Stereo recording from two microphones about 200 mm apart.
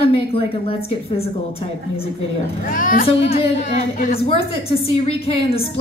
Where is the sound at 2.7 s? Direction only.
40° left (ahead or behind).